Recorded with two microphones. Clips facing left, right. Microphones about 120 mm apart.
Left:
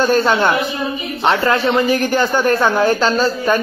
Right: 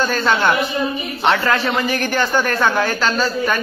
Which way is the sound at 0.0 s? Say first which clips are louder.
Left 3 dB; 20° left (ahead or behind).